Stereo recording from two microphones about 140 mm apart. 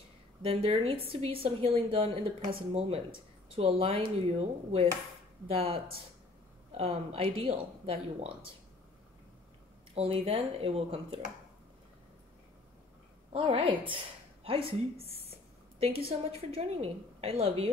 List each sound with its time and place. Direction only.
0.4 s speech: 45° right (ahead or behind)
9.9 s speech: 40° right (ahead or behind)
13.3 s a woman's voice: 40° right (ahead or behind)